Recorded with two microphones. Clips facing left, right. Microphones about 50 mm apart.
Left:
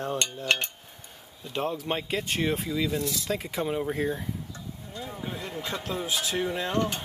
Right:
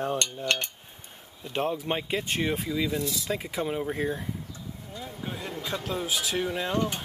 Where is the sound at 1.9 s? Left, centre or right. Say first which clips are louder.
Even; centre.